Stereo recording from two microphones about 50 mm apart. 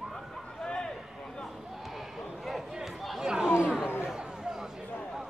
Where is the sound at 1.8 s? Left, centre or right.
Centre.